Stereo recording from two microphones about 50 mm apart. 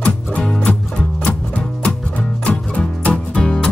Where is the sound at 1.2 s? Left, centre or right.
Left.